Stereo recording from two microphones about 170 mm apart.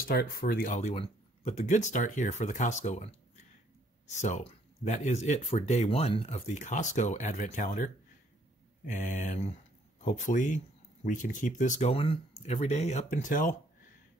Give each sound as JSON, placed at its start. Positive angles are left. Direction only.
{"t": 0.1, "sound": "speech", "side_deg": 65}
{"t": 4.1, "sound": "speech", "side_deg": 40}